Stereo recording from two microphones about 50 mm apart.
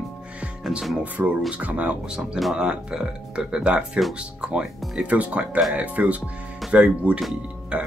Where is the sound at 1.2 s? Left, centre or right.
Right.